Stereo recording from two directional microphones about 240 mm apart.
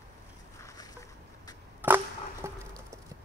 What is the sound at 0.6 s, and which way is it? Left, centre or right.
Boat, centre.